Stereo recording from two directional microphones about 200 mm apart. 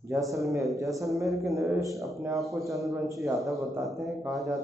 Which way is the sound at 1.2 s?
Centre (ahead or behind).